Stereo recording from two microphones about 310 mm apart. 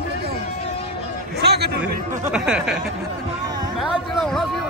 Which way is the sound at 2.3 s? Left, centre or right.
Centre.